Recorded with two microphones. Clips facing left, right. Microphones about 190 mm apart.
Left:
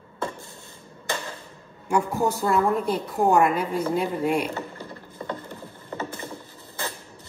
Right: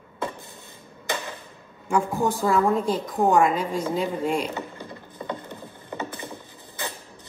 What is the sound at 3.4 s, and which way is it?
Speech, 60° left (ahead or behind).